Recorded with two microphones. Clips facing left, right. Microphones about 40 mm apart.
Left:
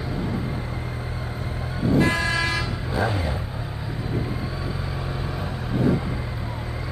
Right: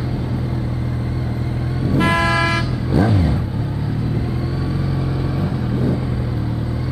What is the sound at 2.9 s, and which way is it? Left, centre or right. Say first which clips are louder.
Vehicle: right 8 dB; centre.